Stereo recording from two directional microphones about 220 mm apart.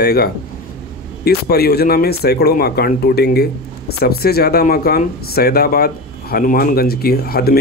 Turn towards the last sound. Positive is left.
turn(degrees=45)  # may be behind; listen again after turning